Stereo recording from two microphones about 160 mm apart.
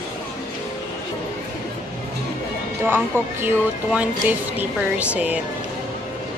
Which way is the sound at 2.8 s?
15° right (ahead or behind).